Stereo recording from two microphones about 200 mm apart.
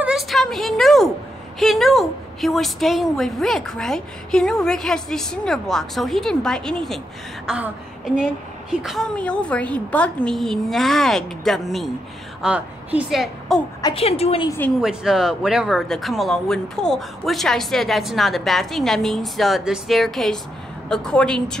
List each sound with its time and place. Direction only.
0.0 s a sound: centre (ahead or behind)
1.6 s a woman's voice: centre (ahead or behind)
13.7 s a woman's voice: 25° left (ahead or behind)
14.8 s speech: 5° right (ahead or behind)